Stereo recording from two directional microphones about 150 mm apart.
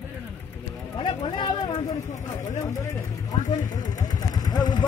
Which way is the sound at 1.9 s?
55° left (ahead or behind).